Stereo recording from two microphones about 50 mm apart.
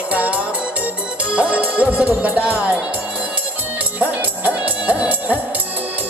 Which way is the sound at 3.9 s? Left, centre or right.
Right.